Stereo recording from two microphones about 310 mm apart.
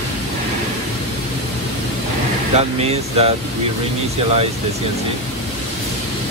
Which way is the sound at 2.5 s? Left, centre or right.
Centre.